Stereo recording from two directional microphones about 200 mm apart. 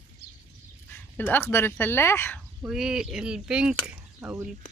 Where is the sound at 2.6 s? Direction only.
5° right (ahead or behind).